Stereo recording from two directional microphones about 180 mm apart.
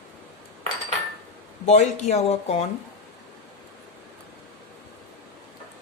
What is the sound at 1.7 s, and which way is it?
Speech, 40° left (ahead or behind).